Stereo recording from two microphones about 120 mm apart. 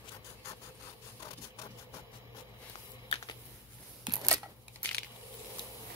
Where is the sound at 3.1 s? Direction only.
50° left (ahead or behind).